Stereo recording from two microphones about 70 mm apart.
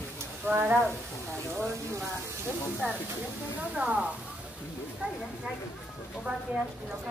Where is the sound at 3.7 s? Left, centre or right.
Centre.